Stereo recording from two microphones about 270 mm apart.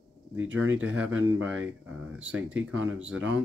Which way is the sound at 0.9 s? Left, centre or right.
Centre.